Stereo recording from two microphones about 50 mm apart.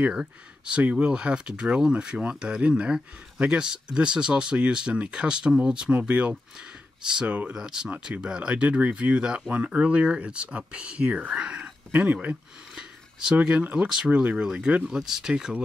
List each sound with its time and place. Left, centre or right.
0.1 s speech: centre
7.5 s speech: centre; by 12.4 s right
12.7 s speech: centre
14.9 s speech: centre